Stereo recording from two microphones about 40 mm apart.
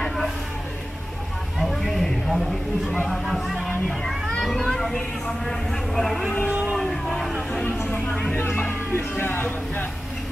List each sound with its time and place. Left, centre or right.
1.6 s a sound: centre
3.1 s speech: centre
3.5 s speech: centre
4.6 s vehicle: centre
5.4 s speech: centre
6.9 s vehicle: centre
8.9 s speech: left